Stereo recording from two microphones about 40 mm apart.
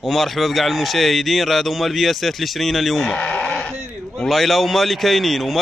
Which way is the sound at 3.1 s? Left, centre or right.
Left.